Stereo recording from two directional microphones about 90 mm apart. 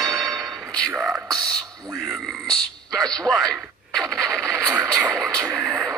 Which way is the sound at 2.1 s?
5° left (ahead or behind).